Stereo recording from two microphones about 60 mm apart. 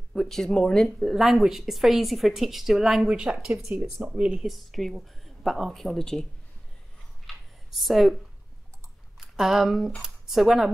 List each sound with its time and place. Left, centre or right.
0.1 s speech: centre
0.9 s a woman's voice: centre
4.0 s speech: centre
4.5 s a woman's voice: centre
7.2 s a sound: centre
9.2 s speech: centre